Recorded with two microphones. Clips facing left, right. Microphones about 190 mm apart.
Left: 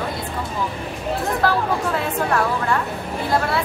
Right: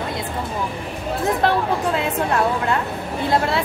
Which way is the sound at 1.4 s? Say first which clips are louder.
Right 1 dB; 20° right (ahead or behind).